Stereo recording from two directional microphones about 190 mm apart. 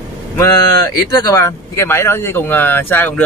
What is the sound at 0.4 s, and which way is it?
Speech, 20° left (ahead or behind).